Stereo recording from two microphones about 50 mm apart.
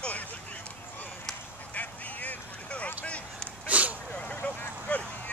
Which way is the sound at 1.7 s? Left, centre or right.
Left.